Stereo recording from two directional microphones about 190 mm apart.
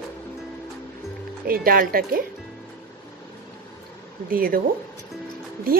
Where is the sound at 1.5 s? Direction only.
50° right (ahead or behind).